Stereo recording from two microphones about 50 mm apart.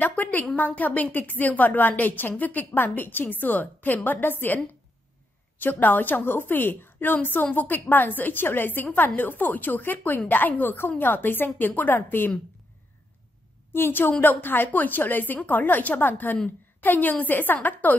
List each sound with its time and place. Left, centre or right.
0.0 s a woman's voice: left
5.6 s a woman's voice: left
13.7 s a woman's voice: left